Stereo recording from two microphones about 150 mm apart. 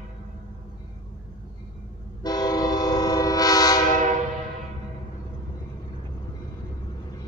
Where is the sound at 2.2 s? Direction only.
25° left (ahead or behind).